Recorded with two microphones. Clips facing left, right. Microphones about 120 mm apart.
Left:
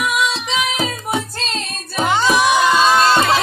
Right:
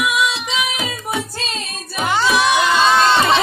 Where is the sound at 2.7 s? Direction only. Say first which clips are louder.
Left 1 dB; 10° left (ahead or behind).